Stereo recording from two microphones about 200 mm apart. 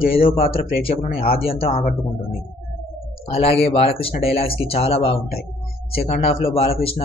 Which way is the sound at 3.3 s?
30° left (ahead or behind).